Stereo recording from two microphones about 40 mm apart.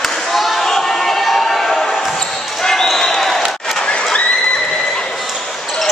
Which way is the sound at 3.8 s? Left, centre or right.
Left.